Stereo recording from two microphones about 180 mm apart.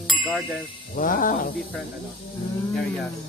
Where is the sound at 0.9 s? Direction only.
50° left (ahead or behind).